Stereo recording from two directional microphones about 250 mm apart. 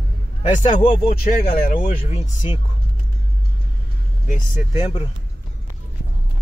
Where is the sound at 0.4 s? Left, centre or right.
Left.